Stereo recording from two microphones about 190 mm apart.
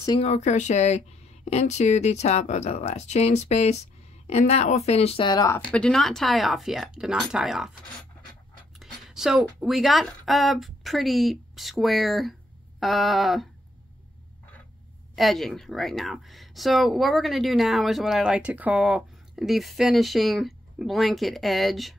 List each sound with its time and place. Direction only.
0.2 s speech: 35° left (ahead or behind); by 5.6 s 20° left (ahead or behind)
5.6 s speech: 5° left (ahead or behind)
8.7 s speech: centre (ahead or behind)
15.1 s speech: centre (ahead or behind)